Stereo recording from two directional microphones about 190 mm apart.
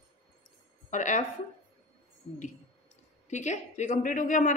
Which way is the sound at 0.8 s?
40° left (ahead or behind).